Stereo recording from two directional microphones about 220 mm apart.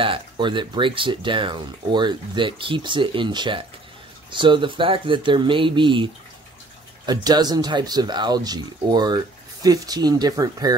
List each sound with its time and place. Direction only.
0.0 s speech: 20° right (ahead or behind)
7.1 s speech: 20° right (ahead or behind)